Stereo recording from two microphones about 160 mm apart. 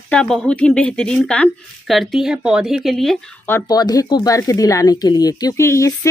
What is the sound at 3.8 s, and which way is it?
Speech, 25° left (ahead or behind).